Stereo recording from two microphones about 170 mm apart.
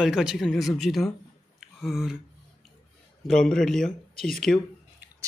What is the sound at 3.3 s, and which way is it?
Speech, 5° left (ahead or behind).